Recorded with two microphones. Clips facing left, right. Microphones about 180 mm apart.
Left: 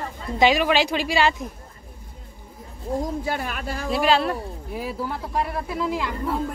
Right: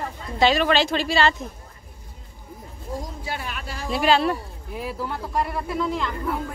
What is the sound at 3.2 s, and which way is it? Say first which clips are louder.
Speech: left 4 dB; 50° left (ahead or behind).